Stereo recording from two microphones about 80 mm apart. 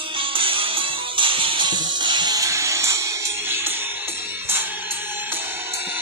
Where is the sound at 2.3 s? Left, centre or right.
Right.